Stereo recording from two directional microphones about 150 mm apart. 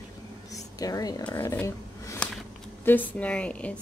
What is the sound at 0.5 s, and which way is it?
A woman's voice, 25° left (ahead or behind).